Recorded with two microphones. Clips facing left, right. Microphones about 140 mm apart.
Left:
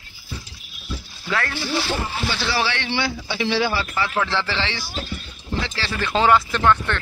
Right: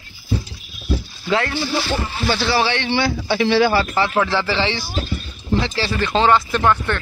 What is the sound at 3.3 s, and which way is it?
Speech, 55° right (ahead or behind).